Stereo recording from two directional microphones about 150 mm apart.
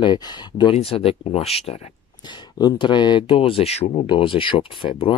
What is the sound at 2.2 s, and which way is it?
Speech, 30° left (ahead or behind).